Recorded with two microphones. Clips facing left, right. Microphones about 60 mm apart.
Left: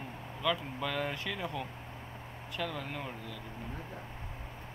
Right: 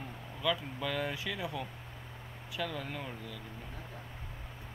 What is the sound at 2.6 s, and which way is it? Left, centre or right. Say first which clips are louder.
Speech: even; centre.